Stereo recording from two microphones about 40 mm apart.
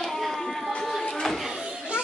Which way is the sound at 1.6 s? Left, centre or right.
Right.